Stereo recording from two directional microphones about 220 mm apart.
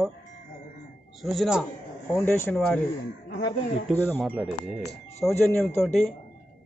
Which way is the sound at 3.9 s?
10° left (ahead or behind).